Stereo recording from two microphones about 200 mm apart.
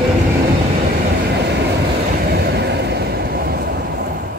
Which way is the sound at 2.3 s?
55° right (ahead or behind).